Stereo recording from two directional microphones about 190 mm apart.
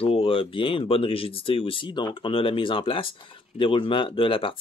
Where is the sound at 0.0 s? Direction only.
30° left (ahead or behind).